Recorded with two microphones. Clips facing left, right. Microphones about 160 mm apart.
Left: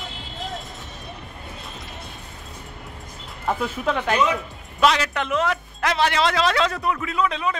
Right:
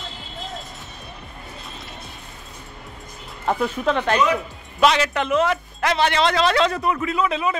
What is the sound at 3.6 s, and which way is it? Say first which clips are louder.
A man's voice: right 4 dB; 5° left (ahead or behind).